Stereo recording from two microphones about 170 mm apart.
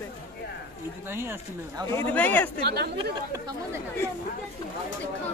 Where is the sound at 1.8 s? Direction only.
15° left (ahead or behind).